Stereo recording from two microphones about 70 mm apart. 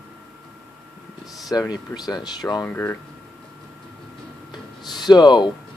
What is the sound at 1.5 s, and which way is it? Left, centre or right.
Speech, left.